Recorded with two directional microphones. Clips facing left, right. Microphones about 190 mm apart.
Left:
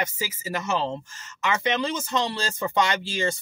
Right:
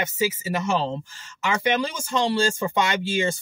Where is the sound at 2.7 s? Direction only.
10° right (ahead or behind).